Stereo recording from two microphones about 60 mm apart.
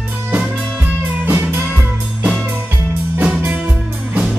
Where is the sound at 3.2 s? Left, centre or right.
Right.